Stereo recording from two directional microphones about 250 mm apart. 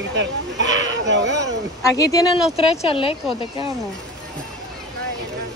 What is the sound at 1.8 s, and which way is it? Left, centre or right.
Speech, centre.